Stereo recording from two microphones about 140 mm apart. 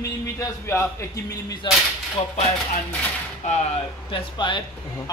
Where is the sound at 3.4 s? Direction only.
55° left (ahead or behind).